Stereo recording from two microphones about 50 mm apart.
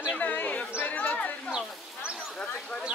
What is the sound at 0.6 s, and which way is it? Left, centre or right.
Speech, left.